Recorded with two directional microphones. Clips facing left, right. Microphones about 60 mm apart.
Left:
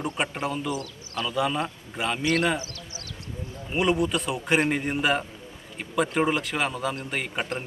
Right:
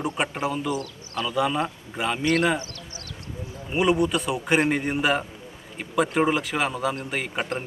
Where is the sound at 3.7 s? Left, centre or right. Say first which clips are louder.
Right 2 dB; centre.